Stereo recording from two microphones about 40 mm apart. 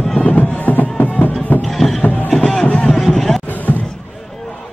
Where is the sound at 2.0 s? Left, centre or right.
Left.